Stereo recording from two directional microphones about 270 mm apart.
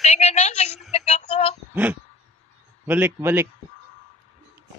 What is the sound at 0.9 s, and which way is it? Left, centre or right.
Music, left.